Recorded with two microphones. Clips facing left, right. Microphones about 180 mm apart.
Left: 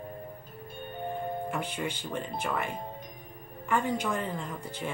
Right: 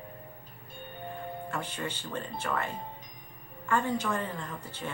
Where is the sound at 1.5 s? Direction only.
15° left (ahead or behind).